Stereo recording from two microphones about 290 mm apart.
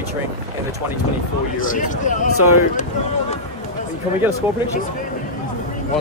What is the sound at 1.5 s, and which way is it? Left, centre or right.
Speech, left.